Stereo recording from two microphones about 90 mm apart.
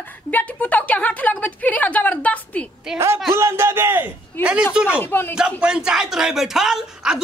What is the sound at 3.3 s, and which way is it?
A man's voice, 30° right (ahead or behind).